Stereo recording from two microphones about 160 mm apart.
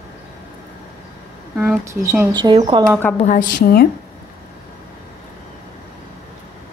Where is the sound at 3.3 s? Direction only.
70° left (ahead or behind).